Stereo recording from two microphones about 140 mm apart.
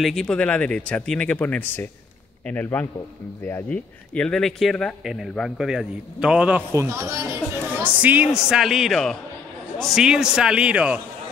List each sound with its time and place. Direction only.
0.0 s speech: centre (ahead or behind)
6.7 s speech: 20° right (ahead or behind)